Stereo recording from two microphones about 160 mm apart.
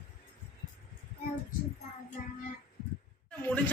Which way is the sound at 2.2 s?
55° left (ahead or behind).